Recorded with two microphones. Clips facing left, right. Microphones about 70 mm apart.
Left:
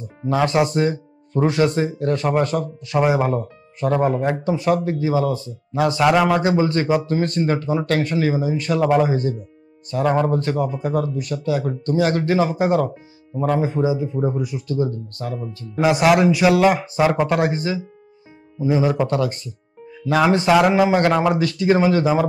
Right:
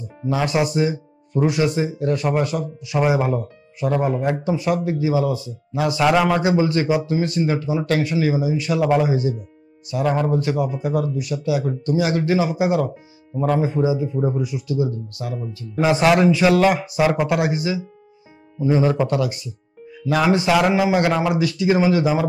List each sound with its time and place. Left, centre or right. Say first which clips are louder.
0.3 s speech: left 2 dB; left
0.7 s music: left 1 dB; left
1.4 s speech: left 1 dB; left
3.0 s speech: left 1 dB; left
6.5 s speech: even; left
13.4 s a man's voice: even; left
16.0 s a man's voice: even; left
16.8 s speech: left 1 dB; left
19.0 s speech: left 1 dB; left